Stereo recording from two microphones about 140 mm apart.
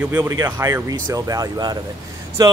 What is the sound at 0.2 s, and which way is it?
A man's voice, 25° right (ahead or behind).